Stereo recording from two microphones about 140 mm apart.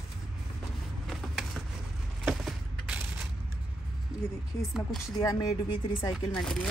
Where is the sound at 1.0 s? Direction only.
5° right (ahead or behind).